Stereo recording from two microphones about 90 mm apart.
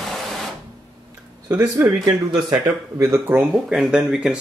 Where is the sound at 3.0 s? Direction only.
25° right (ahead or behind).